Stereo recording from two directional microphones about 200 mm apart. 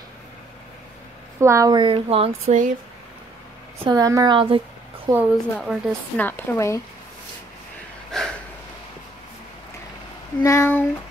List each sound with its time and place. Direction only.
1.4 s a woman's voice: 15° right (ahead or behind); by 2.7 s 35° right (ahead or behind)
3.8 s a woman's voice: 20° right (ahead or behind)
5.1 s speech: 5° right (ahead or behind); by 6.8 s 15° left (ahead or behind)
8.1 s a sound: centre (ahead or behind)
10.4 s speech: 15° left (ahead or behind)